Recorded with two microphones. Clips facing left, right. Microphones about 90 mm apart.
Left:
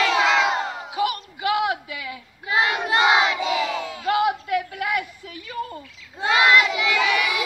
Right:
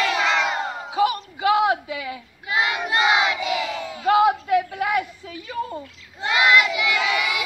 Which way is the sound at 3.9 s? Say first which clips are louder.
Right 6 dB; 25° right (ahead or behind).